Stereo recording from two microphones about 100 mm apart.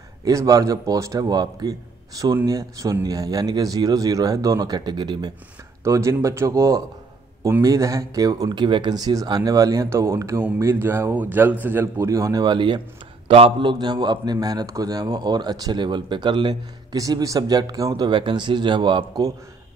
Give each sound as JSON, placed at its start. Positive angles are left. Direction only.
{"t": 0.2, "sound": "speech", "side_deg": -35}
{"t": 1.2, "sound": "speech", "side_deg": -45}
{"t": 5.9, "sound": "speech", "side_deg": -30}
{"t": 13.3, "sound": "speech", "side_deg": -75}
{"t": 13.7, "sound": "speech", "side_deg": -45}
{"t": 16.9, "sound": "speech", "side_deg": -35}